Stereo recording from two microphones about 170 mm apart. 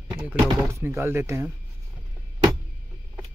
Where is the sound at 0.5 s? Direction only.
15° right (ahead or behind).